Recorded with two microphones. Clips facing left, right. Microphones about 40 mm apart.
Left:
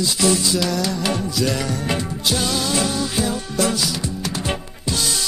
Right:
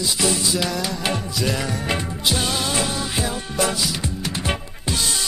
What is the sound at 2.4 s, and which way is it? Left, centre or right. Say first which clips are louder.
Music: left 2 dB; right.